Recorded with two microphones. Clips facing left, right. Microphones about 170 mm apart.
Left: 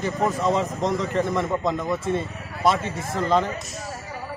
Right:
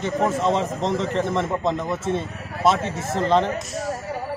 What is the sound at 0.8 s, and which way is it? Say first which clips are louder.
Speech: right 1 dB; 30° right (ahead or behind).